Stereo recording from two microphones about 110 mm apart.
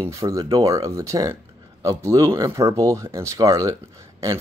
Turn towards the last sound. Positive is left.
turn(degrees=-30)  # may be behind; listen again after turning